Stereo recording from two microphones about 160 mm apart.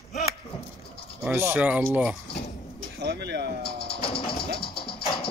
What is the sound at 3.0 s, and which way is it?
Speech, 90° right.